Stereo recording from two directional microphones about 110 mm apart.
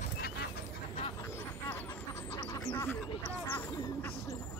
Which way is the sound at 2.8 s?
15° left (ahead or behind).